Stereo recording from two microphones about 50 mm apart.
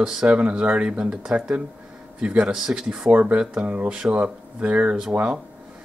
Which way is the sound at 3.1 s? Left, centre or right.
Right.